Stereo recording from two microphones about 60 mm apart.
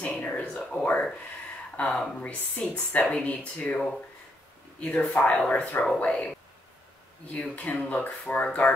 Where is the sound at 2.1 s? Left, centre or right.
Left.